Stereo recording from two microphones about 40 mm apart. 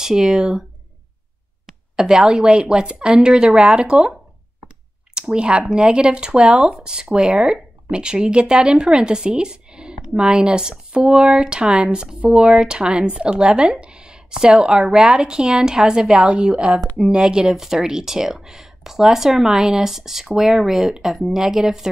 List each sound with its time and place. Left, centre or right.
0.0 s speech: centre
2.0 s speech: centre
5.1 s speech: right
13.7 s a sound: right
14.6 s speech: right